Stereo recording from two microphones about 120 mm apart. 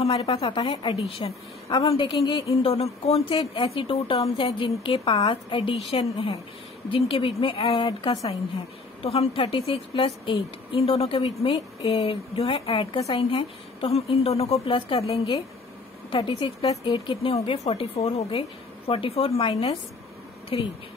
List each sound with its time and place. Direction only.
0.0 s a woman's voice: 55° left (ahead or behind)
2.7 s a woman's voice: 55° left (ahead or behind)
9.0 s a woman's voice: 55° left (ahead or behind)
11.2 s a woman's voice: 40° left (ahead or behind)
16.2 s a woman's voice: 45° left (ahead or behind)